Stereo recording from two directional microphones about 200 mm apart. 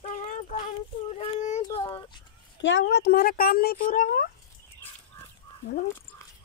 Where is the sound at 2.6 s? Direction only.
60° left (ahead or behind); by 4.3 s 45° left (ahead or behind).